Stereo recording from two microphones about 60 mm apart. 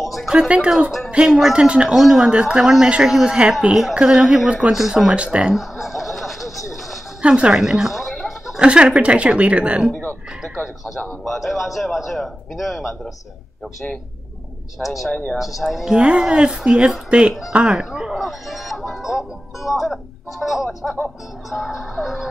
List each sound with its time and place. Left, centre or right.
0.0 s a sound: centre
0.3 s a woman's voice: centre
5.1 s a woman's voice: centre
5.5 s a sound: centre
7.2 s a woman's voice: centre
8.5 s a woman's voice: centre
10.4 s a woman's voice: centre
14.8 s a woman's voice: centre; by 17.3 s right
17.5 s speech: centre